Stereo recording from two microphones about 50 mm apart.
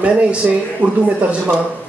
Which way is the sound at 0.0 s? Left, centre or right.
Right.